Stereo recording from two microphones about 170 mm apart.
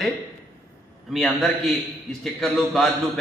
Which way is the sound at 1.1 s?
Centre (ahead or behind).